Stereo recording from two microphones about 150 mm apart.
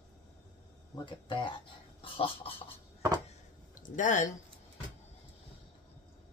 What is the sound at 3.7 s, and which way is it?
Speech, 60° left (ahead or behind).